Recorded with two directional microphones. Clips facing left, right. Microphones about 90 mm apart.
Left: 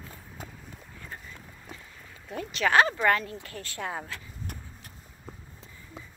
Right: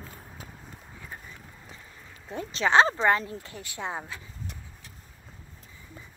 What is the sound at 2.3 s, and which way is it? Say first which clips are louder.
Speech: right 1 dB; 30° right (ahead or behind).